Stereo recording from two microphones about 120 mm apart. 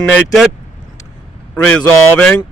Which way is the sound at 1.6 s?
10° left (ahead or behind).